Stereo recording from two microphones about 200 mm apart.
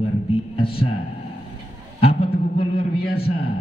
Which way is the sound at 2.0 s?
30° left (ahead or behind).